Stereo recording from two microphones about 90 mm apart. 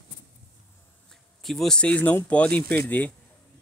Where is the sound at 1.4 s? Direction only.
5° left (ahead or behind).